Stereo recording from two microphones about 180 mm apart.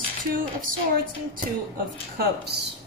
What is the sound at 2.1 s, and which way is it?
Speech, 65° right (ahead or behind).